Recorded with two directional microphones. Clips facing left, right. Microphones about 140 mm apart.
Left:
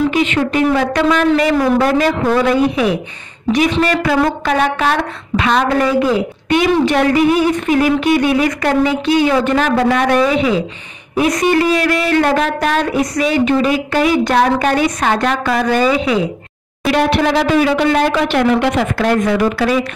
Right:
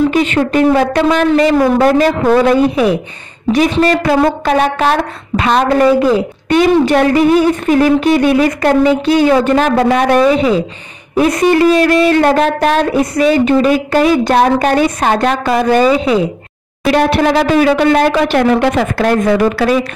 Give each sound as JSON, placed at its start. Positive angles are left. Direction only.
{"t": 0.1, "sound": "speech", "side_deg": -40}